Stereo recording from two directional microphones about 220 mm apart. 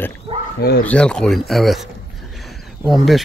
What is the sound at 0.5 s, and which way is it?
Speech, 45° left (ahead or behind).